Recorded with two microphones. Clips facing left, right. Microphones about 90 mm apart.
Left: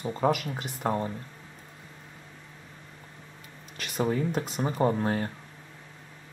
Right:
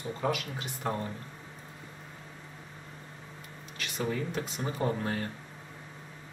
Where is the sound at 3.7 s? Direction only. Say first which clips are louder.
Left 5 dB; 50° left (ahead or behind).